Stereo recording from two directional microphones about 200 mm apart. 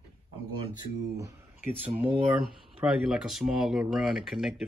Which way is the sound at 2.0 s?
25° right (ahead or behind).